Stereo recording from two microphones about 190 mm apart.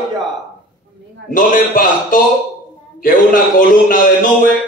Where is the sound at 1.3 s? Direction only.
45° left (ahead or behind).